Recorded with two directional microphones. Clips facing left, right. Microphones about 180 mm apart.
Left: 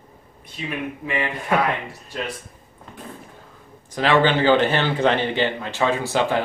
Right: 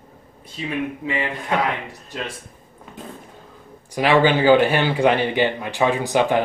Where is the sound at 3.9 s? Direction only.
10° right (ahead or behind).